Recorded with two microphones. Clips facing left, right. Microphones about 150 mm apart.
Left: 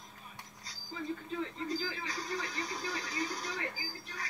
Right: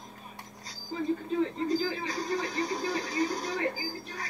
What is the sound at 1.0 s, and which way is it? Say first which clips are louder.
Radio: right 9 dB; 35° right (ahead or behind).